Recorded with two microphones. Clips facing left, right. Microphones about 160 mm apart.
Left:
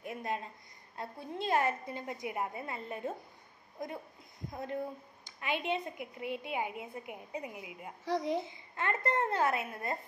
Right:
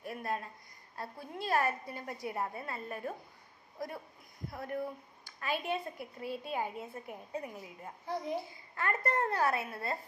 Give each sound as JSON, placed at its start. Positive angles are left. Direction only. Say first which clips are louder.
{"t": 0.0, "sound": "a sound", "louder": "even", "side_deg": 20}
{"t": 0.9, "sound": "a woman's voice", "louder": "left 2 dB", "side_deg": 20}
{"t": 8.0, "sound": "a child's voice", "louder": "left 4 dB", "side_deg": 90}
{"t": 8.4, "sound": "a woman's voice", "louder": "left 2 dB", "side_deg": 20}